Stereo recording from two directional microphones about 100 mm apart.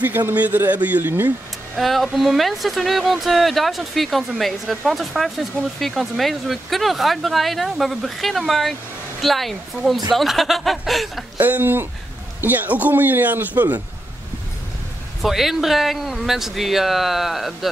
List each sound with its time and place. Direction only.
0.0 s a man's voice: 20° right (ahead or behind)
1.8 s speech: centre (ahead or behind)
11.3 s a man's voice: 20° right (ahead or behind)
15.2 s speech: centre (ahead or behind)